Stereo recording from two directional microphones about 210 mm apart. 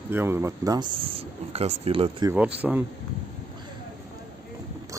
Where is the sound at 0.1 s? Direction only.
10° right (ahead or behind).